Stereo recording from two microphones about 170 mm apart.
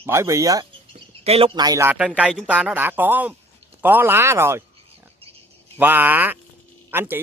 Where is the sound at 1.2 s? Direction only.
35° right (ahead or behind).